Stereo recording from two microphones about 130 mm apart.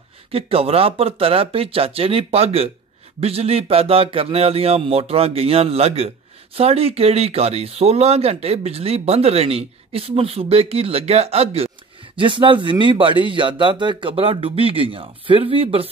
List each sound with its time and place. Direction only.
0.3 s speech: 50° right (ahead or behind)
12.2 s speech: 40° right (ahead or behind)